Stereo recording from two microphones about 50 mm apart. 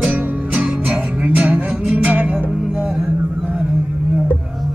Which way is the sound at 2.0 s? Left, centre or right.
Right.